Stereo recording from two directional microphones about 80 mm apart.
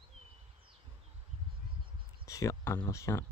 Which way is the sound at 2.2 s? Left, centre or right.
Left.